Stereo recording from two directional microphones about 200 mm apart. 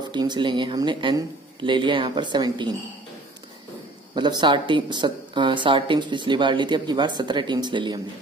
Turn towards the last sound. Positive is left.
turn(degrees=-20)  # may be behind; listen again after turning